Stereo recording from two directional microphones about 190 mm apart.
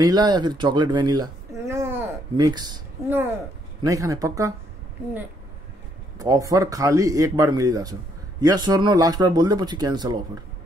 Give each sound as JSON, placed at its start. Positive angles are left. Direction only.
{"t": 0.0, "sound": "speech", "side_deg": -20}
{"t": 6.1, "sound": "speech", "side_deg": -15}